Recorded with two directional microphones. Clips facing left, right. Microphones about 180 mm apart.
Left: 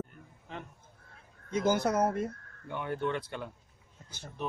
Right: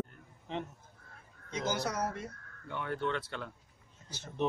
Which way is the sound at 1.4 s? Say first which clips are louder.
Left 7 dB; 50° left (ahead or behind).